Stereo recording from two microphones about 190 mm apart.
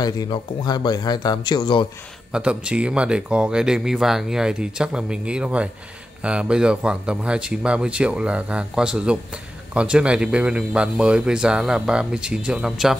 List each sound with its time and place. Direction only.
0.0 s speech: 25° left (ahead or behind)
2.3 s speech: 5° right (ahead or behind)